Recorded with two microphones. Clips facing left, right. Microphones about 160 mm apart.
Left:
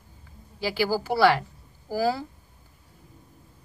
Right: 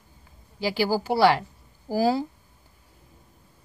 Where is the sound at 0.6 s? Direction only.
20° right (ahead or behind).